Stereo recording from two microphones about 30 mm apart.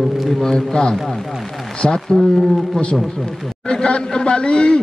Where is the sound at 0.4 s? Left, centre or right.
Left.